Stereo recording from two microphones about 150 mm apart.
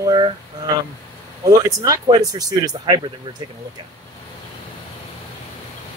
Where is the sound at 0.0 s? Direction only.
30° right (ahead or behind).